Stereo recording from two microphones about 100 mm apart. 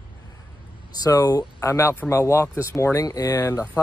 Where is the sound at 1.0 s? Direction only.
40° left (ahead or behind).